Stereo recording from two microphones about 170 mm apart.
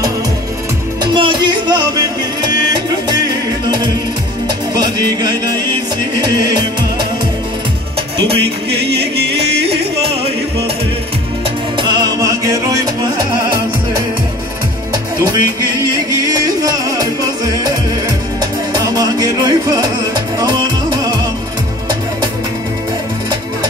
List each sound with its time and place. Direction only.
1.0 s music: 30° right (ahead or behind)
4.7 s music: 25° right (ahead or behind)
11.8 s music: 25° right (ahead or behind)
16.3 s music: 20° right (ahead or behind)